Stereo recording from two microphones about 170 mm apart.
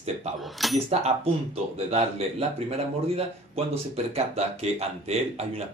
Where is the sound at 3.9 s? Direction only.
35° right (ahead or behind).